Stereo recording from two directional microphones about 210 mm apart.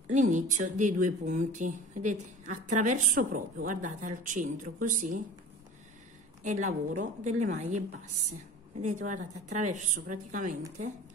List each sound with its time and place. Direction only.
0.1 s speech: 35° right (ahead or behind)
6.4 s speech: 35° right (ahead or behind)
8.8 s speech: 35° right (ahead or behind)